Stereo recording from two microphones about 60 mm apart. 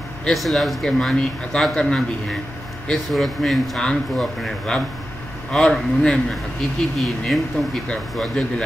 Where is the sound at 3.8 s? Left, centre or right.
Centre.